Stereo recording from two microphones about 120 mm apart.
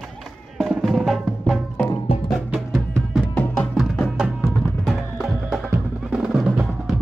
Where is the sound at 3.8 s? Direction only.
Centre (ahead or behind).